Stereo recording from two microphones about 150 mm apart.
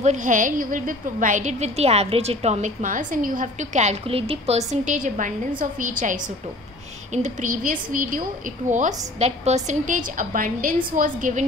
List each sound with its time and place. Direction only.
0.0 s a woman's voice: 55° right (ahead or behind)